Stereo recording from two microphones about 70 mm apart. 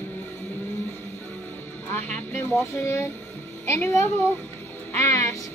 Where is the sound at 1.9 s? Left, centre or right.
Left.